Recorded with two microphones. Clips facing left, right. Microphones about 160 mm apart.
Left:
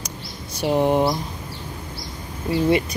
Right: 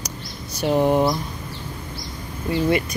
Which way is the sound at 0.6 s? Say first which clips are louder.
Right 1 dB; 15° left (ahead or behind).